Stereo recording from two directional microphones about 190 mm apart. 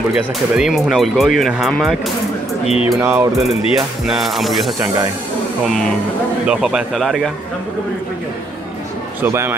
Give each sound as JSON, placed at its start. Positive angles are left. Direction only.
{"t": 0.1, "sound": "speech", "side_deg": -5}
{"t": 2.6, "sound": "speech", "side_deg": 35}
{"t": 3.0, "sound": "speech", "side_deg": -10}
{"t": 4.7, "sound": "speech", "side_deg": -10}
{"t": 5.7, "sound": "speech", "side_deg": 0}
{"t": 9.2, "sound": "speech", "side_deg": -15}